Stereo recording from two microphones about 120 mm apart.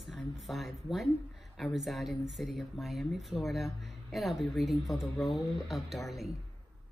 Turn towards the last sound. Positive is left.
turn(degrees=0)  # may be behind; listen again after turning